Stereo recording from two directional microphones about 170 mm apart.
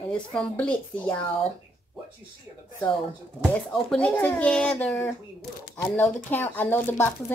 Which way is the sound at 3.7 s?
5° left (ahead or behind).